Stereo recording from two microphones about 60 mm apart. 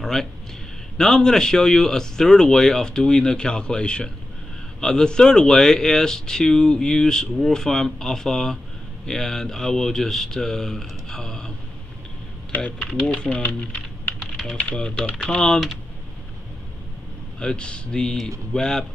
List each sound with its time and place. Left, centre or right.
0.0 s speech: centre
12.7 s speech: centre
13.3 s speech: left
14.2 s typing: centre
14.6 s speech: left
17.4 s speech: centre